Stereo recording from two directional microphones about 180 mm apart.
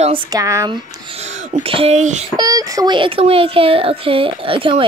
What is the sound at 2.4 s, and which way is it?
Speech, 20° right (ahead or behind).